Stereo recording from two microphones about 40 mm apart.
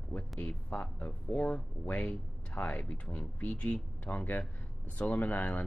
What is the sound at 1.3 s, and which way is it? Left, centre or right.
Speech, left.